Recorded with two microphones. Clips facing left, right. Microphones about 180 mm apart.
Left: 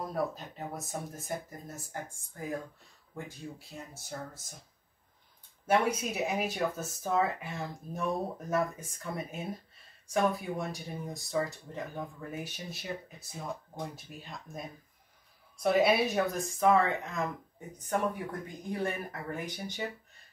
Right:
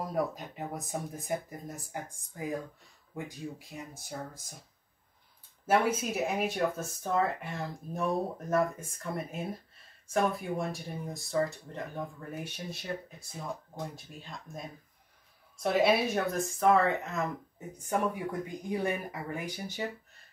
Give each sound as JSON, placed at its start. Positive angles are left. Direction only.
{"t": 0.1, "sound": "speech", "side_deg": -15}
{"t": 5.7, "sound": "speech", "side_deg": -5}